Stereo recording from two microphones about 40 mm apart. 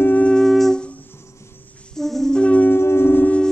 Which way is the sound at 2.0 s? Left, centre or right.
Centre.